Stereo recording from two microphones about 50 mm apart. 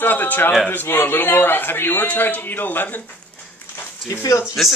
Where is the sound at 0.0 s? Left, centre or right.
Left.